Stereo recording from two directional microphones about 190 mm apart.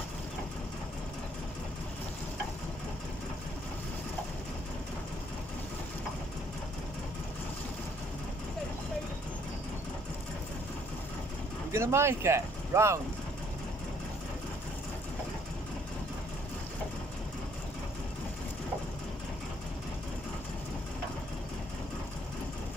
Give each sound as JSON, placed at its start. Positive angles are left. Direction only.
{"t": 11.7, "sound": "speech", "side_deg": -15}